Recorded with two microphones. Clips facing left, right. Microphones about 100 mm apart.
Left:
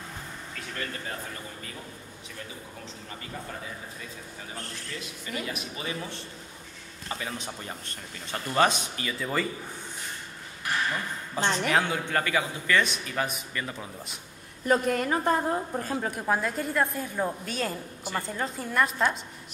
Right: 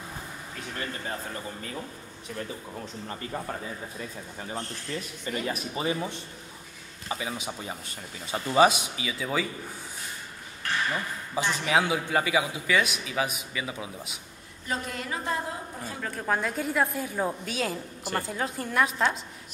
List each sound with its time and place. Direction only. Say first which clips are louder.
0.6 s speech: right 1 dB; 25° right (ahead or behind)
5.3 s speech: right 4 dB; 40° right (ahead or behind)
5.9 s a man's voice: right 6 dB; 20° right (ahead or behind); by 9.5 s 5° right (ahead or behind)
10.6 s a sound: even; 10° left (ahead or behind)
11.4 s a man's voice: even; 10° right (ahead or behind)
14.7 s a woman's voice: left 8 dB; 50° left (ahead or behind)
16.1 s a woman's voice: right 2 dB; 10° left (ahead or behind)